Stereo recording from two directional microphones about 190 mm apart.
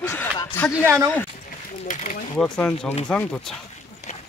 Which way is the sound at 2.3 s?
5° left (ahead or behind).